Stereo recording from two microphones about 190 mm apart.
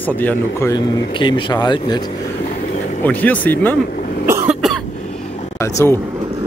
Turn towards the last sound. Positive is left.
turn(degrees=15)  # may be behind; listen again after turning